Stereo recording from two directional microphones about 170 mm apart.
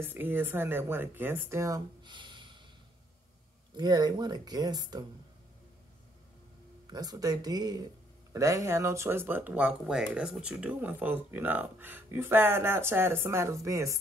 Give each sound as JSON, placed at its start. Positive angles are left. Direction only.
{"t": 0.0, "sound": "speech", "side_deg": -10}
{"t": 3.7, "sound": "speech", "side_deg": -25}
{"t": 6.9, "sound": "speech", "side_deg": -20}